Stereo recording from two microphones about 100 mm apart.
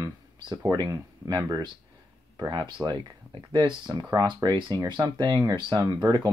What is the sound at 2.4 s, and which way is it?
Speech, 50° right (ahead or behind).